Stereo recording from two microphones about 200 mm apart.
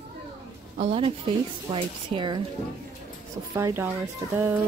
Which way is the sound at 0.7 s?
30° right (ahead or behind).